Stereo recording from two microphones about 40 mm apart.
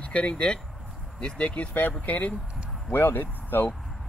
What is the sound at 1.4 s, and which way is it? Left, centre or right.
Speech, left.